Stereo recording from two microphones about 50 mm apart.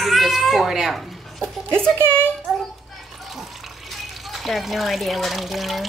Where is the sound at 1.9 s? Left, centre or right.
Right.